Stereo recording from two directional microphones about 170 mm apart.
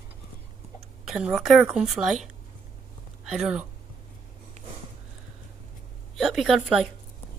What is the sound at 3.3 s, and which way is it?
Speech, 10° right (ahead or behind).